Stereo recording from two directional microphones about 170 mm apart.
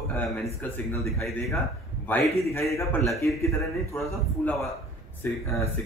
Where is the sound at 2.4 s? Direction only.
15° left (ahead or behind).